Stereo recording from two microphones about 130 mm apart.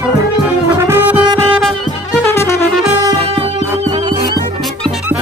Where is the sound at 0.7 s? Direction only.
15° right (ahead or behind).